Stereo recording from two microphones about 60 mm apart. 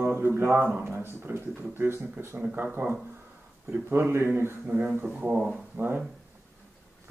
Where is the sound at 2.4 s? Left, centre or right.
Right.